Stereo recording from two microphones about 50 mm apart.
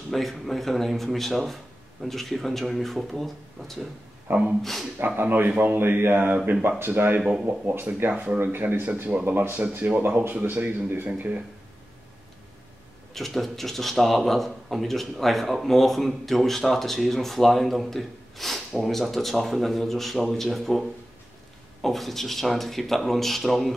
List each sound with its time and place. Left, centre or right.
0.1 s speech: centre
4.3 s speech: right
6.3 s speech: right
7.4 s speech: right
11.1 s speech: right
13.1 s speech: centre
21.8 s speech: centre